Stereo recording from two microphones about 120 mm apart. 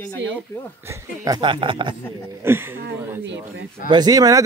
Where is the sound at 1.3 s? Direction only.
45° right (ahead or behind).